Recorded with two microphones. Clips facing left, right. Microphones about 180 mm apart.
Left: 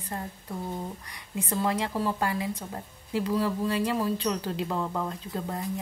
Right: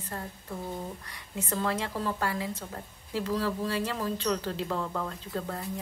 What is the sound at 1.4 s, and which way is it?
Speech, 10° left (ahead or behind).